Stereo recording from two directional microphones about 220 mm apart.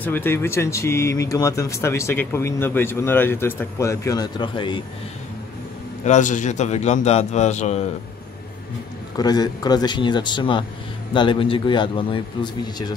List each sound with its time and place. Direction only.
0.0 s speech: 10° left (ahead or behind)
6.0 s a man's voice: 35° left (ahead or behind)
9.1 s a man's voice: 15° left (ahead or behind)